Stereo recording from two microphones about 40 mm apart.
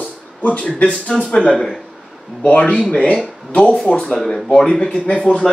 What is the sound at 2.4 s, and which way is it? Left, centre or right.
Speech, left.